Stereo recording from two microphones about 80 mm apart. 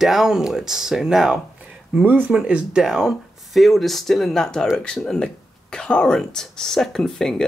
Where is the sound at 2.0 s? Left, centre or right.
Right.